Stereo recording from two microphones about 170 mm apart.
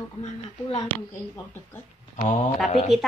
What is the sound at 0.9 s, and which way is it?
Speech, 30° right (ahead or behind).